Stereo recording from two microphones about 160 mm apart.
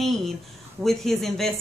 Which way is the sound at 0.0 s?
Centre (ahead or behind).